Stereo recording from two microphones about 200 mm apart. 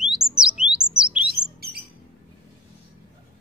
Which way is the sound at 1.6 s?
50° right (ahead or behind).